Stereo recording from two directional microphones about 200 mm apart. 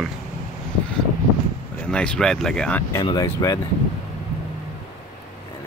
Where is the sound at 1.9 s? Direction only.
5° left (ahead or behind).